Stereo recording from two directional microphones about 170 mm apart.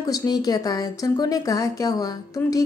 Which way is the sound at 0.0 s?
20° left (ahead or behind).